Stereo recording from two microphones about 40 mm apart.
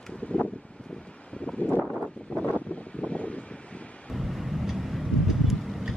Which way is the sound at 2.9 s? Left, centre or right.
Left.